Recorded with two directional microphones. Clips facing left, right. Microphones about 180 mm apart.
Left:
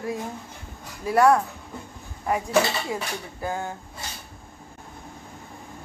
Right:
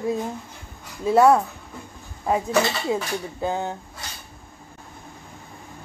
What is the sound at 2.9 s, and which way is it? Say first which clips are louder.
Speech: right 5 dB; 20° right (ahead or behind).